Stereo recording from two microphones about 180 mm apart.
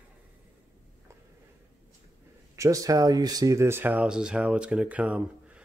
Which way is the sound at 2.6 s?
20° right (ahead or behind).